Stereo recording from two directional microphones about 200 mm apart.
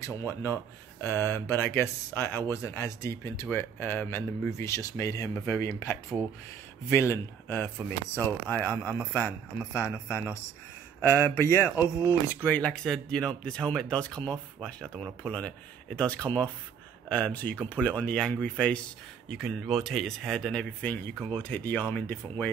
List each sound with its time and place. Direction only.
0.0 s speech: 15° left (ahead or behind)
11.7 s speech: 10° right (ahead or behind)
12.1 s speech: 10° left (ahead or behind)
16.3 s speech: 25° right (ahead or behind)
17.1 s speech: 5° left (ahead or behind)